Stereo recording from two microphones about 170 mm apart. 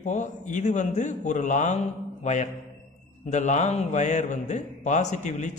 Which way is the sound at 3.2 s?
45° left (ahead or behind).